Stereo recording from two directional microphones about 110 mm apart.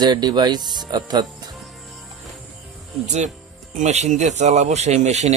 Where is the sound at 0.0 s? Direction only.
40° right (ahead or behind).